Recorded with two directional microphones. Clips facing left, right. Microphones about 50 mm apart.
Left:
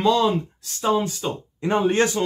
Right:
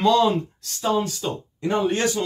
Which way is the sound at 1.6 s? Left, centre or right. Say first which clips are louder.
Left 2 dB; left.